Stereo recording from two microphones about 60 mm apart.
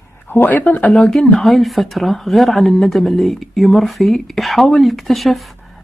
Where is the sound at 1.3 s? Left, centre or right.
Centre.